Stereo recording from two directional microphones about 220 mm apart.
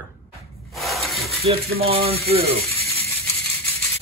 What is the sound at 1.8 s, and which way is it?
Mechanisms, 25° right (ahead or behind).